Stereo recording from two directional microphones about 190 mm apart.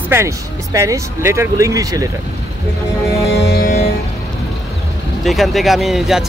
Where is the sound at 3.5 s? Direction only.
50° left (ahead or behind).